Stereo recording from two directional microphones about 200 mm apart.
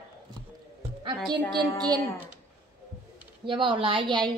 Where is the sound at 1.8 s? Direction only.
15° right (ahead or behind).